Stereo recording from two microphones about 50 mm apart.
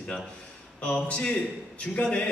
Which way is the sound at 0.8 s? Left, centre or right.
Left.